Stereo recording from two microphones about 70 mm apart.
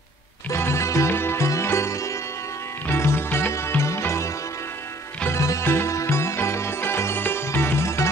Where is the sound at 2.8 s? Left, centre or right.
Left.